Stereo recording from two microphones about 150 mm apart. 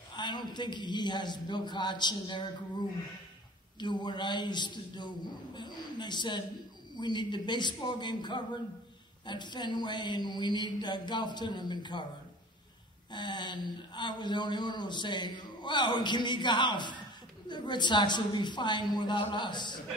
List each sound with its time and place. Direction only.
0.1 s a man's voice: 30° left (ahead or behind)
3.8 s a man's voice: 30° left (ahead or behind)
13.1 s a man's voice: 30° left (ahead or behind)